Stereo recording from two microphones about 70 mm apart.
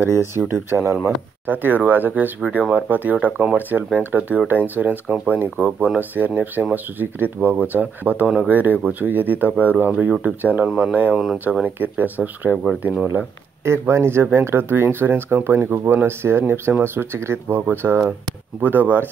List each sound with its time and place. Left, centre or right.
0.0 s speech: right
9.9 s speech: centre
13.7 s speech: right